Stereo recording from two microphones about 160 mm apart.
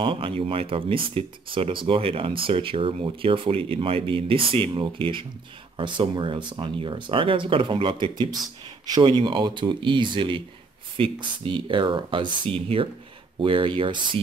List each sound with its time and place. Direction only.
0.0 s speech: 35° right (ahead or behind)